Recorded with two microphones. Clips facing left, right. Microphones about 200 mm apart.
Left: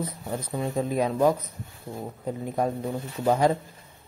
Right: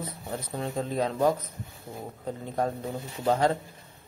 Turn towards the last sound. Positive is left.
turn(degrees=10)  # may be behind; listen again after turning